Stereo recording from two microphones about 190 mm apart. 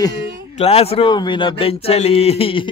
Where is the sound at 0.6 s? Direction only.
30° left (ahead or behind).